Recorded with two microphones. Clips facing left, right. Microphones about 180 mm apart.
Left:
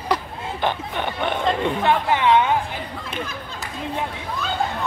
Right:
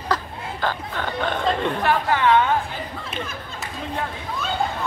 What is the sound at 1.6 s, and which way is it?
Speech, 15° left (ahead or behind).